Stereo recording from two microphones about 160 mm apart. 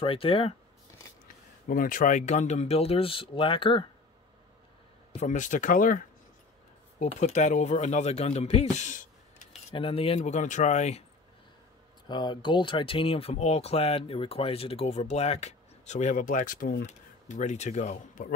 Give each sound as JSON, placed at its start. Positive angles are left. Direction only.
{"t": 0.0, "sound": "speech", "side_deg": 35}
{"t": 1.2, "sound": "speech", "side_deg": 60}
{"t": 5.2, "sound": "speech", "side_deg": 50}
{"t": 7.0, "sound": "speech", "side_deg": 45}
{"t": 9.7, "sound": "speech", "side_deg": 35}
{"t": 12.1, "sound": "speech", "side_deg": 30}